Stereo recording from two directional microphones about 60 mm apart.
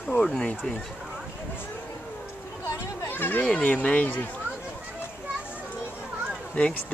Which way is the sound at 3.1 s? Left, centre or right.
Left.